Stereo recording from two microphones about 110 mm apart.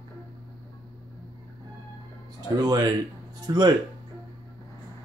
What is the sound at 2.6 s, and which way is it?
Speech, 40° right (ahead or behind).